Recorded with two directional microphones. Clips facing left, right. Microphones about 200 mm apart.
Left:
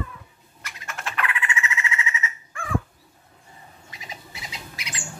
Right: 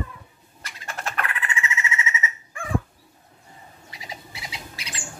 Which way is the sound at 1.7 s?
25° right (ahead or behind).